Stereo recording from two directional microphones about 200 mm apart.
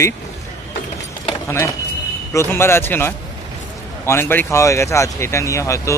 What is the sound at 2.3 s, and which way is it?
Speech, 10° left (ahead or behind).